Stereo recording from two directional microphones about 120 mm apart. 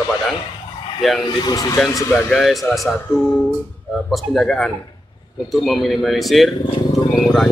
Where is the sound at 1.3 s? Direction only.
35° left (ahead or behind).